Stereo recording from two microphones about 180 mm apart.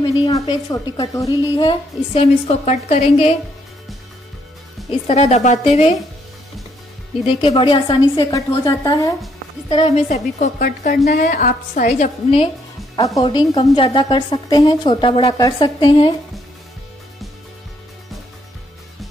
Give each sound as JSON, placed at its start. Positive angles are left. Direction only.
{"t": 0.0, "sound": "a woman's voice", "side_deg": 25}
{"t": 5.0, "sound": "a woman's voice", "side_deg": 35}
{"t": 7.2, "sound": "a woman's voice", "side_deg": 30}
{"t": 9.7, "sound": "a woman's voice", "side_deg": 35}
{"t": 10.6, "sound": "a woman's voice", "side_deg": 55}
{"t": 12.9, "sound": "a woman's voice", "side_deg": 20}